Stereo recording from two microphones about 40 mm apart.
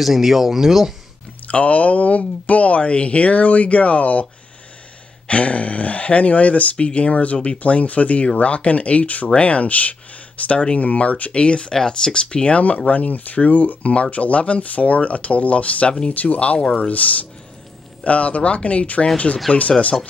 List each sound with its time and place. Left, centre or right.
0.0 s speech: centre
1.5 s speech: left
5.3 s speech: left